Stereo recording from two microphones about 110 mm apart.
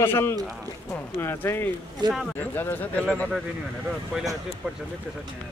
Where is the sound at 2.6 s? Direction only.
20° left (ahead or behind).